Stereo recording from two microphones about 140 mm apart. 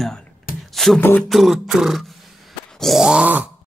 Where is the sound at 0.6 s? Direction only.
Centre (ahead or behind).